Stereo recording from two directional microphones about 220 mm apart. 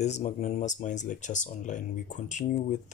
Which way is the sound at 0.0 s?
30° left (ahead or behind).